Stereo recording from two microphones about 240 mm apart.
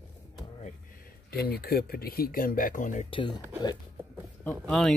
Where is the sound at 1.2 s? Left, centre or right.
Left.